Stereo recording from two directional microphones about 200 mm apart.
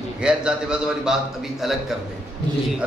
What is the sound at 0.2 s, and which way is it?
A man's voice, 5° right (ahead or behind).